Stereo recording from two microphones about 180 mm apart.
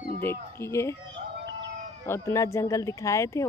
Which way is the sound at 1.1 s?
75° right (ahead or behind).